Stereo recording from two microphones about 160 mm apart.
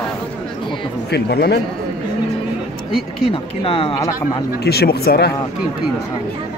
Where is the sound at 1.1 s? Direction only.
90° left.